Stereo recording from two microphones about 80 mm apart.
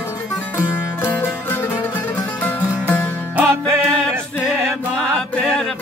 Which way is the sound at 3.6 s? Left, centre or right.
Right.